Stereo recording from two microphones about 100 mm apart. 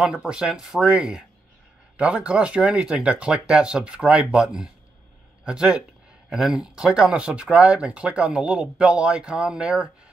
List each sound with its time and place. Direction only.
0.0 s speech: 10° right (ahead or behind)